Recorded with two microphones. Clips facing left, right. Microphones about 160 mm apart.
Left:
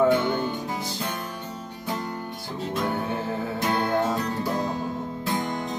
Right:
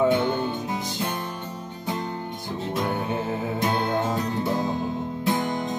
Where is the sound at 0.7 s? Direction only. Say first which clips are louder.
Right 1 dB; 20° right (ahead or behind).